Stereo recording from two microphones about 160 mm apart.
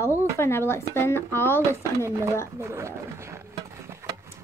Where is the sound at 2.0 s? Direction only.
20° right (ahead or behind).